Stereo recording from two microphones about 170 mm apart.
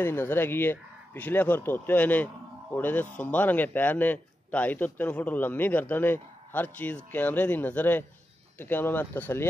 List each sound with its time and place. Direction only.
0.0 s a man's voice: 15° left (ahead or behind)